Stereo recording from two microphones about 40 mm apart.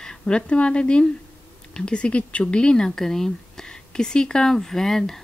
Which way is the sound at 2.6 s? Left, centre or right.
Centre.